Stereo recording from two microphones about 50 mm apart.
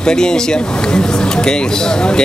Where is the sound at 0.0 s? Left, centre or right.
Centre.